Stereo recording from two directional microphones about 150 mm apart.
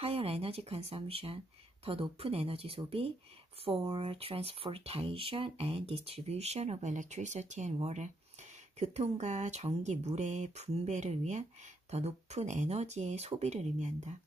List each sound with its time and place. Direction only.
0.0 s speech: 40° right (ahead or behind)